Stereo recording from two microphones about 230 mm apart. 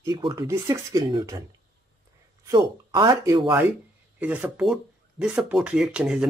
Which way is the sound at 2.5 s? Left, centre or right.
Centre.